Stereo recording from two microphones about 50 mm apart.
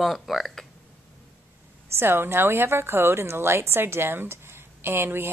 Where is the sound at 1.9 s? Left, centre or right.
Right.